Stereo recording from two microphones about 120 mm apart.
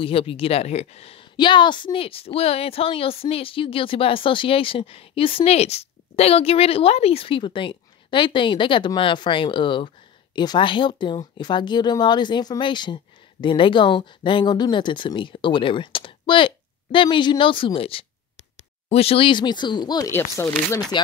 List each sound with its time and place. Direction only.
0.0 s speech: 50° left (ahead or behind)
1.3 s speech: 40° left (ahead or behind)
20.1 s speech: 20° left (ahead or behind)